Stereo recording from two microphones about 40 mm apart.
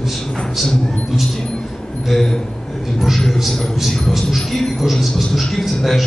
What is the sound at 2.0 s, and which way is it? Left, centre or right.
Speech, centre.